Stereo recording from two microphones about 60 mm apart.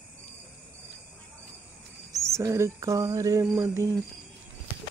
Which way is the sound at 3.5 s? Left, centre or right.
Right.